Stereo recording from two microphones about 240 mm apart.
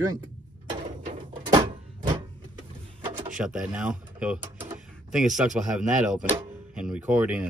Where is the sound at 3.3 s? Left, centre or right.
Centre.